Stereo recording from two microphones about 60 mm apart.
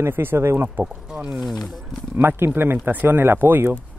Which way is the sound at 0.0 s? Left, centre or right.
Right.